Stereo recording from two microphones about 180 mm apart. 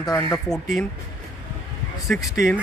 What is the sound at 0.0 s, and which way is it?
Speech, 20° left (ahead or behind).